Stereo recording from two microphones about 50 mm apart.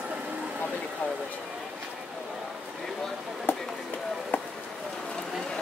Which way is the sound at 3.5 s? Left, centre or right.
Left.